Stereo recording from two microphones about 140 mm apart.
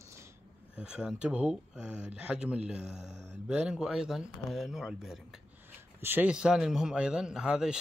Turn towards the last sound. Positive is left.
turn(degrees=-5)  # may be behind; listen again after turning